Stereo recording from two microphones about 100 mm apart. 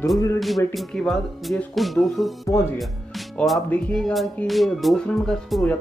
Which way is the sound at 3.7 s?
10° left (ahead or behind).